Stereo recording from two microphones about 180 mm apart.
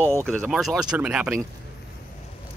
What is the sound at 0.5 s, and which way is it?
Speech, centre (ahead or behind).